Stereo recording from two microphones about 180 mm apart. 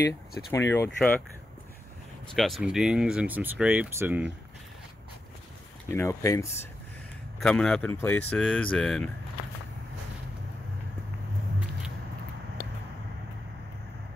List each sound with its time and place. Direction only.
0.5 s speech: 15° left (ahead or behind)
2.3 s speech: centre (ahead or behind)
5.9 s speech: 15° left (ahead or behind)
7.3 s speech: 5° left (ahead or behind)